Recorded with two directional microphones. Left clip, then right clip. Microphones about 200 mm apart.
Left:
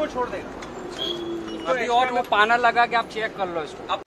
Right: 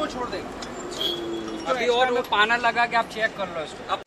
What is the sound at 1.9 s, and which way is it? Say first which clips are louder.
Speech: even; 50° left (ahead or behind).